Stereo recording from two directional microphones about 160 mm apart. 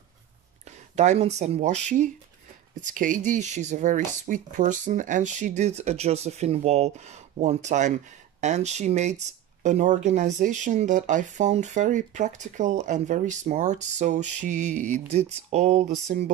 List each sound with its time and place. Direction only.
0.7 s speech: 45° right (ahead or behind)
2.8 s speech: 55° right (ahead or behind)